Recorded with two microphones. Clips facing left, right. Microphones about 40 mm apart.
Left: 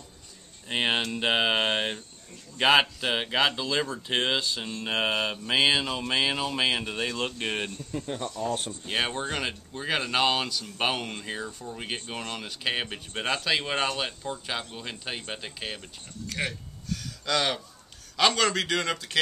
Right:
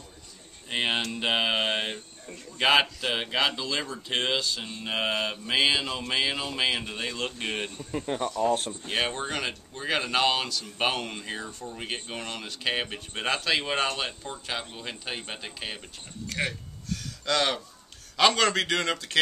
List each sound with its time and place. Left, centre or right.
0.7 s speech: centre
7.7 s speech: right
8.5 s speech: centre